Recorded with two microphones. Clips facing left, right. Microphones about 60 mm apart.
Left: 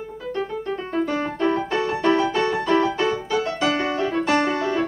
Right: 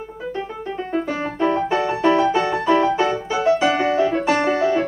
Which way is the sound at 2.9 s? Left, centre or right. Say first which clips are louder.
Right 2 dB; centre.